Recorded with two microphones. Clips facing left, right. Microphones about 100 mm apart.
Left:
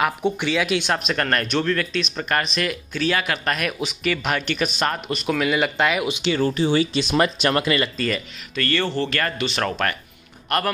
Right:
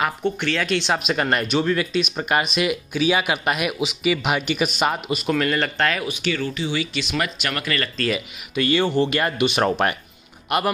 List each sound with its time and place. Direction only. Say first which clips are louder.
0.2 s speech: left 1 dB; 10° left (ahead or behind)
6.0 s speech: left 2 dB; 25° left (ahead or behind)
6.4 s speech: left 6 dB; 40° left (ahead or behind); by 7.9 s 20° left (ahead or behind)
8.5 s speech: right 4 dB; 15° right (ahead or behind)